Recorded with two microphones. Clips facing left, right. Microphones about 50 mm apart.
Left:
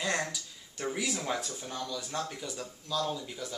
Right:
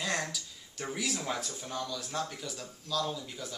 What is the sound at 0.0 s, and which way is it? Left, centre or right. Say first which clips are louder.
Speech: left 2 dB; centre.